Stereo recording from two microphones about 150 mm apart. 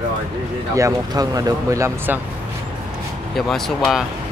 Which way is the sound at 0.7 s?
25° right (ahead or behind).